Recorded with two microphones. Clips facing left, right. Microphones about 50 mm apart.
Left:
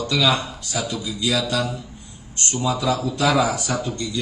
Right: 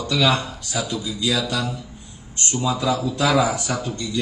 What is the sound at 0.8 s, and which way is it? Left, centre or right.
Speech, left.